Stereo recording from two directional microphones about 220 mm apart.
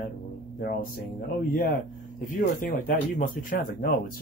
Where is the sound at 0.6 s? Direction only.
40° left (ahead or behind).